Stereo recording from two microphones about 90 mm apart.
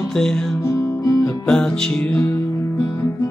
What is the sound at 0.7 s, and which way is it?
Music, 35° left (ahead or behind).